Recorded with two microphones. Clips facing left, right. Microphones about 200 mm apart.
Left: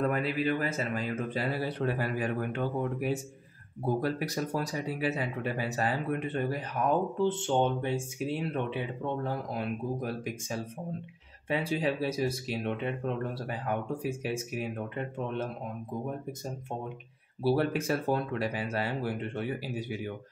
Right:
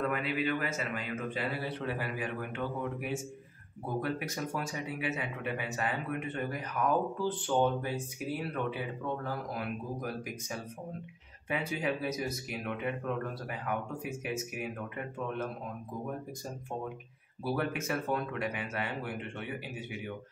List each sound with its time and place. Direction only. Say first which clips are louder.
0.0 s speech: left 3 dB; 35° left (ahead or behind)
17.4 s speech: left 6 dB; 30° left (ahead or behind)